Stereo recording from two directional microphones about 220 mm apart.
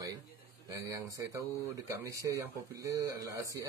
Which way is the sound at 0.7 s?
15° right (ahead or behind).